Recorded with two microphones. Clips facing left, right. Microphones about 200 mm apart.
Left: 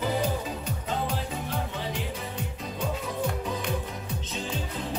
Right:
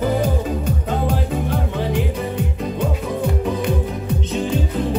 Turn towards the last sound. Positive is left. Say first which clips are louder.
# right 12 dB
turn(degrees=-60)  # may be behind; listen again after turning